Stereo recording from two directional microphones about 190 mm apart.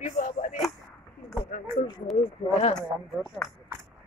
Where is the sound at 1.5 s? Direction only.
50° left (ahead or behind).